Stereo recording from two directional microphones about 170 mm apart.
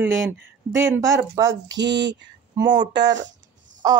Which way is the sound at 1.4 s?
15° right (ahead or behind).